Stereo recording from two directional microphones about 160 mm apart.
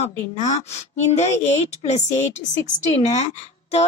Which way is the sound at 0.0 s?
45° left (ahead or behind).